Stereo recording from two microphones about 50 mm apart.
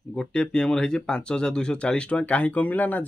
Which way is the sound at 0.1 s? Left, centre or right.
Centre.